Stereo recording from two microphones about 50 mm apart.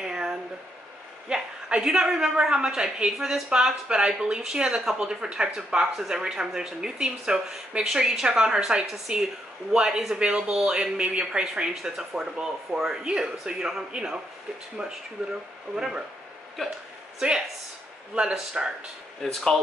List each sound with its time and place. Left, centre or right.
0.0 s a sound: centre
1.8 s speech: centre
18.1 s speech: centre
19.2 s speech: centre